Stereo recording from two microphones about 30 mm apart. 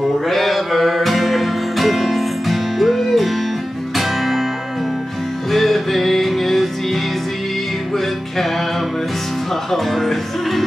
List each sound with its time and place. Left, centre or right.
0.3 s music: centre
5.5 s music: centre
9.7 s music: centre